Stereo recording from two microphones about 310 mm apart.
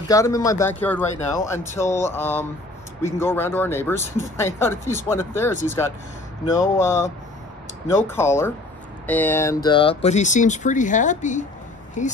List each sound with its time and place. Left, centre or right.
0.1 s speech: centre